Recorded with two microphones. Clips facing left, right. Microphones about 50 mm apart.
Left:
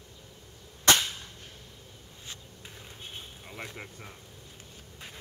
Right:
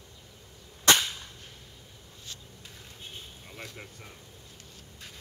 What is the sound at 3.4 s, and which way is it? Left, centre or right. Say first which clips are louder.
Vehicle: left 4 dB; centre.